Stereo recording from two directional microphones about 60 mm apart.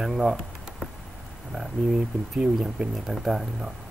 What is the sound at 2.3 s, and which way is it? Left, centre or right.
Speech, centre.